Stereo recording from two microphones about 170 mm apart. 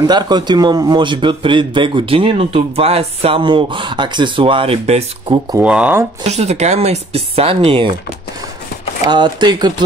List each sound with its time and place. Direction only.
0.0 s a man's voice: 25° right (ahead or behind)
5.6 s speech: 10° right (ahead or behind)
6.2 s speech: 40° right (ahead or behind)
9.0 s a man's voice: 25° right (ahead or behind)